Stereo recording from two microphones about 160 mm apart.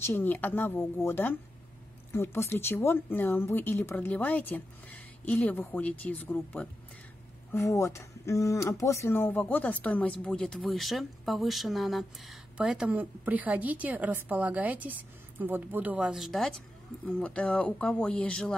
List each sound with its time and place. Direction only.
0.0 s speech: 10° left (ahead or behind)